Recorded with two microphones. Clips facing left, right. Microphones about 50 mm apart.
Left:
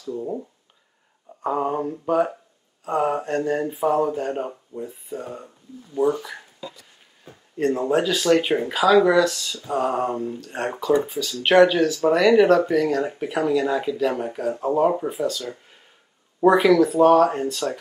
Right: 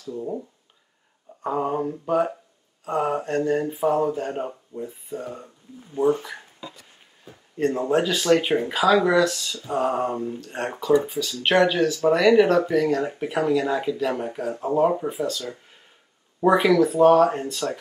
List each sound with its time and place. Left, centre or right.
0.1 s speech: centre
5.9 s speech: right
7.5 s speech: centre